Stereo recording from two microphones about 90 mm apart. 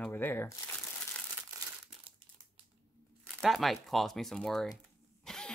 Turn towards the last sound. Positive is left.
turn(degrees=5)  # may be behind; listen again after turning